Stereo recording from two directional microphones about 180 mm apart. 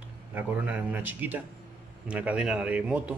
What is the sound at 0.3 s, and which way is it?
A man's voice, 10° right (ahead or behind).